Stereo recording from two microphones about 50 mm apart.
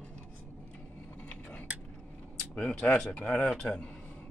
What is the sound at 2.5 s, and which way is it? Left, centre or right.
Speech, left.